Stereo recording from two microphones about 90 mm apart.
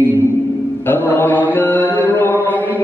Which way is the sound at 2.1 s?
25° left (ahead or behind).